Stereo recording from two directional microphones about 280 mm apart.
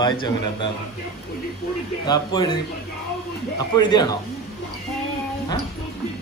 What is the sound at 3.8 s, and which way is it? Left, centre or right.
Speech, centre.